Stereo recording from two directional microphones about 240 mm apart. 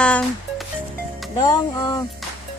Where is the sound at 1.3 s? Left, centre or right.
Centre.